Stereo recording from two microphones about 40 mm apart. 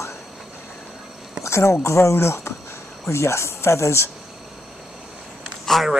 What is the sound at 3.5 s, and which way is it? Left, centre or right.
Speech, left.